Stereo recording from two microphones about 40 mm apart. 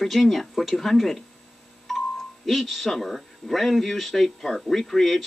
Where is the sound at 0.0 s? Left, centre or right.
Centre.